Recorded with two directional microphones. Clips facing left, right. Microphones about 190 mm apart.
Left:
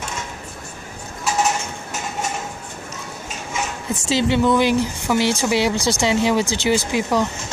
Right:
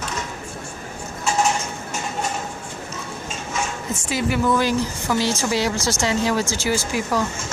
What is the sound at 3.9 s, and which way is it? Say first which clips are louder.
Speech: left 6 dB; 25° left (ahead or behind).